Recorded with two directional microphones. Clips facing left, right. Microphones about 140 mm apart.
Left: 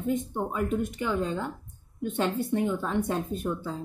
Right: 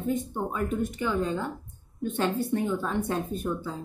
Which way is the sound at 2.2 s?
15° left (ahead or behind).